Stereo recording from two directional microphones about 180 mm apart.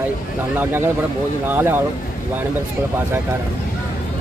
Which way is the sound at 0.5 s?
10° right (ahead or behind).